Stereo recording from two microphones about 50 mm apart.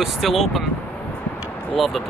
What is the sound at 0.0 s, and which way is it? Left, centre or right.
Speech, centre.